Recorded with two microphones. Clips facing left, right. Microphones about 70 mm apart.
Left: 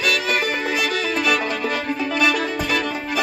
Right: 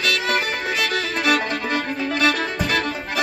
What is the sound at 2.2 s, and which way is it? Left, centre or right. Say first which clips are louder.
Music: even; right.